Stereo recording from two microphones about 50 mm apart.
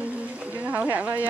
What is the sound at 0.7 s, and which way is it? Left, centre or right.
Speech, right.